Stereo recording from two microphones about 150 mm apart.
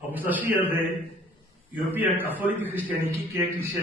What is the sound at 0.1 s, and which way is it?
Speech, 10° right (ahead or behind).